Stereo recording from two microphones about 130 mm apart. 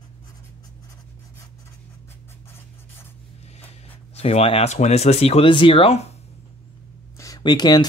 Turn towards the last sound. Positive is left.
turn(degrees=35)  # may be behind; listen again after turning